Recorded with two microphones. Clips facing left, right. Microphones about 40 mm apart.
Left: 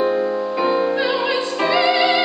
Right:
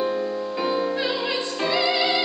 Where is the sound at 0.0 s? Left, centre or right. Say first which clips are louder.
Left 6 dB; left.